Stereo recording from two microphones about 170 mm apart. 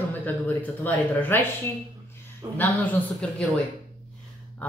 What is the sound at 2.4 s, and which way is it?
Speech, 25° right (ahead or behind).